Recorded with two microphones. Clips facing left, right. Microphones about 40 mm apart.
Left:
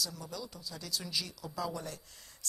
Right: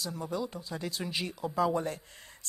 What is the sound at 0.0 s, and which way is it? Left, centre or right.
Speech, right.